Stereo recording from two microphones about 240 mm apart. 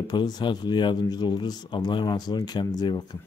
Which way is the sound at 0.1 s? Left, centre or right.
Centre.